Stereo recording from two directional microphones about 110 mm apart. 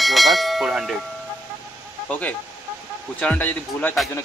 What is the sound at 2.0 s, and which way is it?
A man's voice, 15° left (ahead or behind).